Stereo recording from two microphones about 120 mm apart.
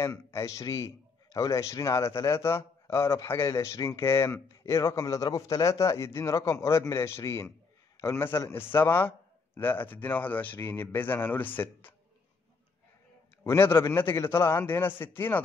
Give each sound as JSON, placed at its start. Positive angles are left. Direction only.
{"t": 0.0, "sound": "a man's voice", "side_deg": 25}
{"t": 13.4, "sound": "a man's voice", "side_deg": 20}